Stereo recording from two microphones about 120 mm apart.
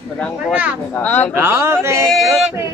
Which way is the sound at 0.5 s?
10° right (ahead or behind).